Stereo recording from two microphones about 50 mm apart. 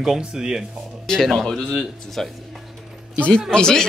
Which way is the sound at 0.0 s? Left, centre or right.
Centre.